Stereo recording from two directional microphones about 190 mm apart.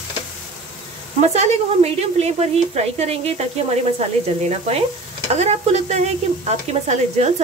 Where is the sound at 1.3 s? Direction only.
35° right (ahead or behind).